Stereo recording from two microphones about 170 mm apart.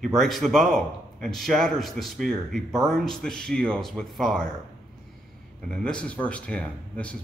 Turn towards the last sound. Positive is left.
turn(degrees=5)  # may be behind; listen again after turning